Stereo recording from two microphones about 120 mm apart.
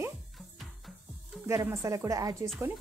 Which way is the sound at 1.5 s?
25° right (ahead or behind).